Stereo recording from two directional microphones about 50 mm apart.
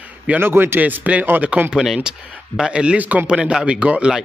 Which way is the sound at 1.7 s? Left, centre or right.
Centre.